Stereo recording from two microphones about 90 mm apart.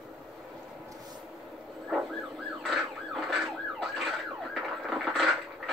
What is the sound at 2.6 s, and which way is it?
Emergency vehicle, centre (ahead or behind).